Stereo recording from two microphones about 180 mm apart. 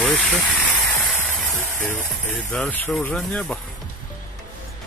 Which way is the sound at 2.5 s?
5° left (ahead or behind).